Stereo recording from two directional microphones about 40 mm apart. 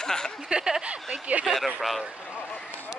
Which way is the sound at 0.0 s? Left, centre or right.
Centre.